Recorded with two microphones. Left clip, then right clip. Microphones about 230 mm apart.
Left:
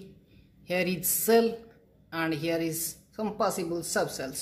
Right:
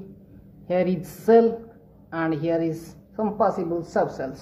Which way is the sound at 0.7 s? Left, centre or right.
Left.